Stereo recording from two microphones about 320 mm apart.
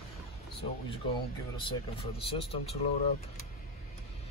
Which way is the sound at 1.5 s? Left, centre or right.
Centre.